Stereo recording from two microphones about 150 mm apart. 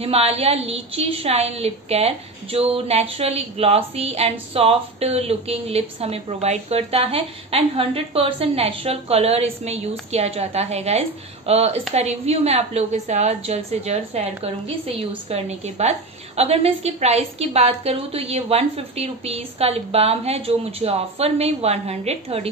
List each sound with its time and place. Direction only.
0.0 s a woman's voice: 40° right (ahead or behind)